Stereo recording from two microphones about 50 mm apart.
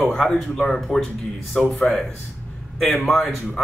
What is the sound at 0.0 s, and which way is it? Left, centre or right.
Speech, centre.